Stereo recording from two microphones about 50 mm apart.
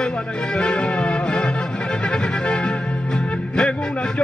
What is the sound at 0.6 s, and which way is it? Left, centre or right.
Music, centre.